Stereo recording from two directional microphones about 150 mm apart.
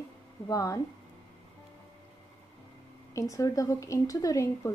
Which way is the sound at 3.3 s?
20° left (ahead or behind).